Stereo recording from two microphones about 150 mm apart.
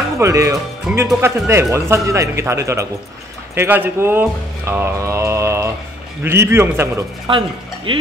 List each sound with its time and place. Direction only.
0.2 s a man's voice: 20° right (ahead or behind)
0.9 s speech: centre (ahead or behind)
1.2 s a man's voice: 20° right (ahead or behind)
7.2 s speech: 35° right (ahead or behind)